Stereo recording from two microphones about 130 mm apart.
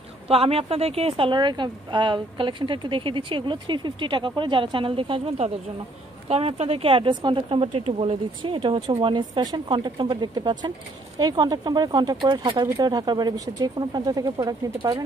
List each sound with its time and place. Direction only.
0.3 s speech: 50° right (ahead or behind); by 15.0 s 30° right (ahead or behind)